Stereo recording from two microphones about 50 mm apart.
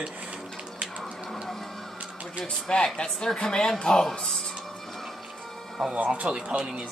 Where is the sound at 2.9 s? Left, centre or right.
Centre.